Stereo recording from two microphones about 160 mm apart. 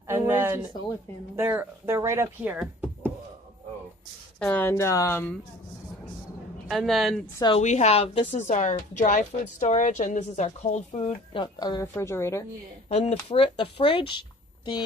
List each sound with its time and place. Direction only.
0.1 s a sound: 15° right (ahead or behind)
1.3 s speech: 15° right (ahead or behind)
4.4 s speech: 10° left (ahead or behind)
6.7 s speech: centre (ahead or behind)
7.5 s a woman's voice: 45° left (ahead or behind); by 12.4 s 15° left (ahead or behind)
12.9 s speech: 40° left (ahead or behind)